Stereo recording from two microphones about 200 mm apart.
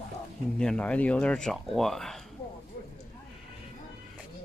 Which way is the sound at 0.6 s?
5° left (ahead or behind).